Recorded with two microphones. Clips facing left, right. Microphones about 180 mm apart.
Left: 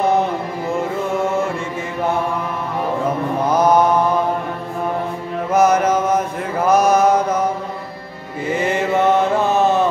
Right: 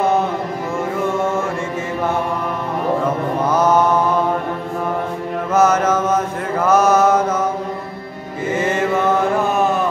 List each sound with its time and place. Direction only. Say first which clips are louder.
3.5 s mantra: left 1 dB; 15° left (ahead or behind)
5.5 s mantra: left 1 dB; 15° left (ahead or behind)
8.6 s chant: left 2 dB; 20° left (ahead or behind)